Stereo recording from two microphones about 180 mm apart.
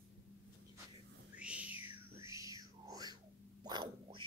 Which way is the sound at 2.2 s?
15° right (ahead or behind).